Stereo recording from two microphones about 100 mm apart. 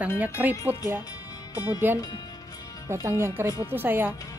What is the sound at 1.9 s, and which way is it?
Speech, 20° right (ahead or behind).